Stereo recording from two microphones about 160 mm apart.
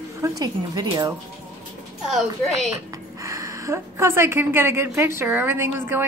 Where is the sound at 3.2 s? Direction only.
20° right (ahead or behind).